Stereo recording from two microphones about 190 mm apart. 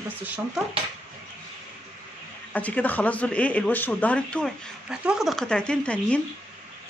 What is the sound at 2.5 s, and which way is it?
A woman's voice, 10° left (ahead or behind).